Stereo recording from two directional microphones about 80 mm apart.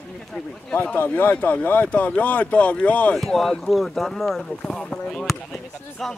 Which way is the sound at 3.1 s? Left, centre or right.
Centre.